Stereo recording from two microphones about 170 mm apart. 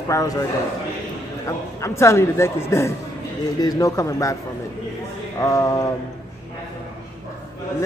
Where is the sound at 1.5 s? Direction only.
15° left (ahead or behind).